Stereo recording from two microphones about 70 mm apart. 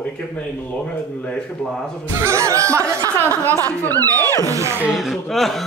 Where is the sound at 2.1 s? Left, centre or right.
Right.